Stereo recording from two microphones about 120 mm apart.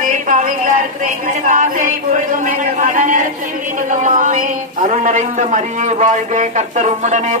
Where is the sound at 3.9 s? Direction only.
90° right.